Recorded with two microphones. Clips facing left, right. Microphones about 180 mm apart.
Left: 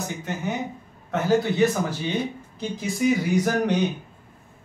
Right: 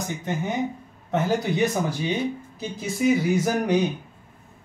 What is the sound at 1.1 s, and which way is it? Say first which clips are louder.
Speech: left 2 dB; 15° right (ahead or behind).